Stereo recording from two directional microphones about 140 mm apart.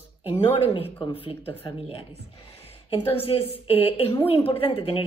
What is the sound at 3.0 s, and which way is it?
A woman's voice, 45° left (ahead or behind).